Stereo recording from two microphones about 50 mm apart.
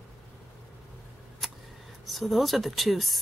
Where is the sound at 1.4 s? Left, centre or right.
Centre.